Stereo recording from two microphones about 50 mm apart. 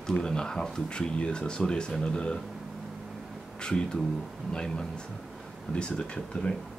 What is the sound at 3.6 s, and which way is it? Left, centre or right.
Speech, centre.